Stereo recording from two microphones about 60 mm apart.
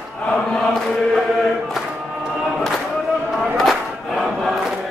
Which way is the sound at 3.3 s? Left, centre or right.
Centre.